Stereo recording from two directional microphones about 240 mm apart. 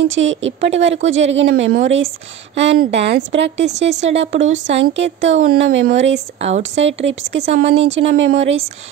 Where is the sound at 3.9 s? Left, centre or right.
Right.